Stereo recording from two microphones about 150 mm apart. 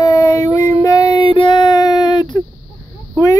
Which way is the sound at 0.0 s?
25° left (ahead or behind).